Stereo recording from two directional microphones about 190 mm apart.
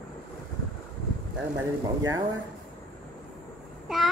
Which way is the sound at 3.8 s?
Centre (ahead or behind).